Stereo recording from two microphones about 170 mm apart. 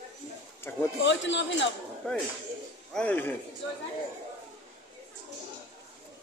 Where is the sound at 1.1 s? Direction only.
90° left.